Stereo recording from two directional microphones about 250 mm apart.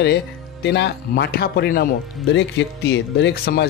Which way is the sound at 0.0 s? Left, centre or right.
Left.